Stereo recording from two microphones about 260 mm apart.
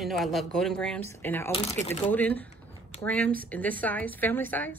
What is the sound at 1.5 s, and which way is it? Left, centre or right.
Speech, left.